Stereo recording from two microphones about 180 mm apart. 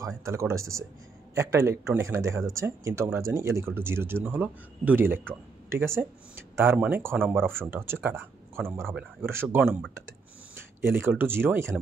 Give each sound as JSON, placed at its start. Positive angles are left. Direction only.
{"t": 0.2, "sound": "speech", "side_deg": -15}